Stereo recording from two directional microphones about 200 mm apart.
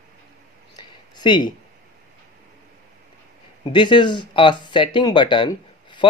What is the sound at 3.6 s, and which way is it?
Speech, 25° left (ahead or behind).